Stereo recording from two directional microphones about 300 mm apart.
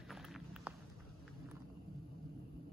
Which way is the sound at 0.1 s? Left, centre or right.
Centre.